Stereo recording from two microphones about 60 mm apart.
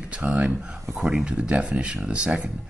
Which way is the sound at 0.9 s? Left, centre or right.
Centre.